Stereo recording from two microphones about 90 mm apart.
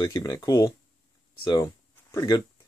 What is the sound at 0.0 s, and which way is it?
Speech, 35° left (ahead or behind).